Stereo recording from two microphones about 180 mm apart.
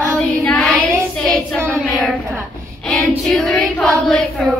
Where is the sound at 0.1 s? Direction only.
5° left (ahead or behind).